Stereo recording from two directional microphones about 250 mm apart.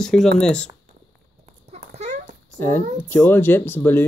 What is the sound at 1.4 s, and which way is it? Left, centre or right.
Horse, right.